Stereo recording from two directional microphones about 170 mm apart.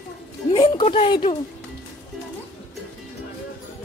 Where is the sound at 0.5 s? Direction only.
30° left (ahead or behind).